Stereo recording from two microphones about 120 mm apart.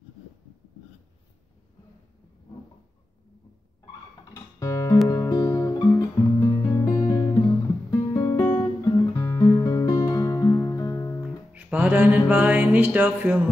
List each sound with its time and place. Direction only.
4.2 s music: 25° left (ahead or behind)
5.0 s guitar: 30° left (ahead or behind)
8.9 s music: 30° left (ahead or behind)
11.5 s music: 10° right (ahead or behind)